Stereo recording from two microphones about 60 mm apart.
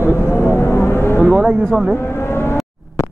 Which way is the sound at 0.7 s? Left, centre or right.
Left.